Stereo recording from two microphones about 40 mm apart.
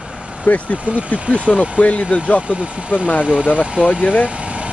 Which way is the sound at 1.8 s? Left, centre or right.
Left.